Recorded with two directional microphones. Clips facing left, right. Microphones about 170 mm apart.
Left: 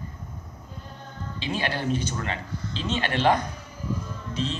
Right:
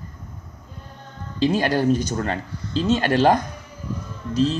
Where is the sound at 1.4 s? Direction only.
40° right (ahead or behind).